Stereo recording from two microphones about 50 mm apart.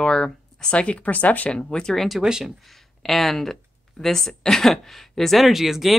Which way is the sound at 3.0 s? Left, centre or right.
Centre.